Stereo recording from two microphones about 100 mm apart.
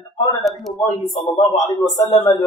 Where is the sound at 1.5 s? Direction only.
45° left (ahead or behind).